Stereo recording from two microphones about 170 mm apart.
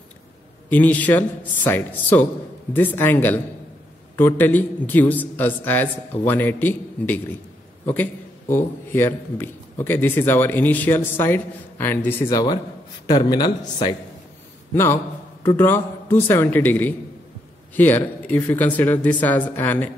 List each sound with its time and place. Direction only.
0.7 s a man's voice: 10° left (ahead or behind); by 13.9 s 25° left (ahead or behind)
14.7 s a man's voice: 15° left (ahead or behind)